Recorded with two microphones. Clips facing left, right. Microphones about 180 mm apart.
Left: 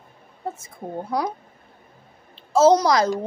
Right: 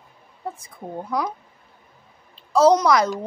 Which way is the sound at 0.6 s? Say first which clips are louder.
Left 1 dB; 30° left (ahead or behind).